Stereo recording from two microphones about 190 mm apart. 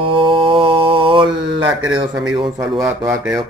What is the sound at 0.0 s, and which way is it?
Mantra, 25° right (ahead or behind).